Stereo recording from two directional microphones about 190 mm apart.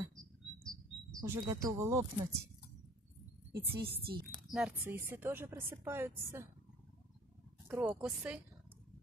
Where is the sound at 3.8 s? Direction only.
55° right (ahead or behind).